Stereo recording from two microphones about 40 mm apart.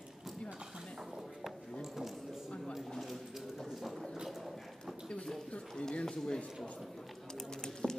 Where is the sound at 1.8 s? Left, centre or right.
Centre.